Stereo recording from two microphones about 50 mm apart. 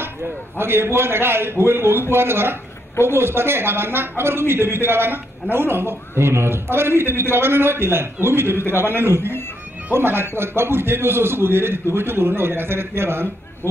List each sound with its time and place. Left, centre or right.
0.6 s a man's voice: right